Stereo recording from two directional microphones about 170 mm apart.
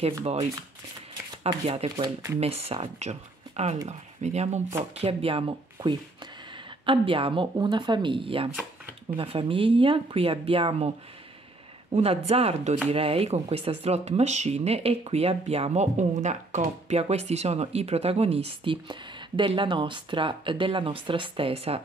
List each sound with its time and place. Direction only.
0.0 s speech: 35° right (ahead or behind)
1.5 s speech: 25° right (ahead or behind)
6.9 s speech: 30° right (ahead or behind)
11.9 s speech: 35° right (ahead or behind)